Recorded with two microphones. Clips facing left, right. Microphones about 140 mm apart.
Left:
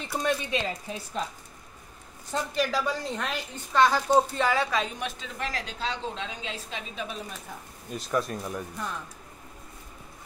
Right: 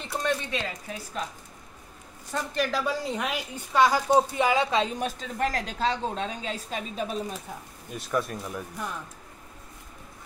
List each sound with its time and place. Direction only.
0.0 s speech: 10° left (ahead or behind)
0.5 s speech: 25° left (ahead or behind)
2.6 s a woman's voice: 5° right (ahead or behind); by 4.8 s 20° right (ahead or behind)
4.9 s a woman's voice: 45° right (ahead or behind)
7.9 s speech: centre (ahead or behind)